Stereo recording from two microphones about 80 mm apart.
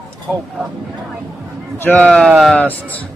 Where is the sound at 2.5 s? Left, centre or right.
Left.